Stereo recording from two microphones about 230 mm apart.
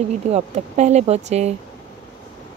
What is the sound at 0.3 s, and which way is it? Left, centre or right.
Speech, right.